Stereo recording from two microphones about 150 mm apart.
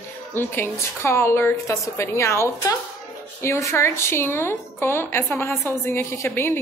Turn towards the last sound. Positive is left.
turn(degrees=15)  # may be behind; listen again after turning